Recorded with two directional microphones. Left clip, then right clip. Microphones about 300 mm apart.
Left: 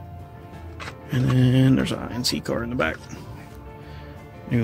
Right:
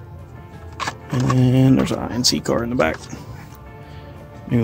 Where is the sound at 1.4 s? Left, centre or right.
Centre.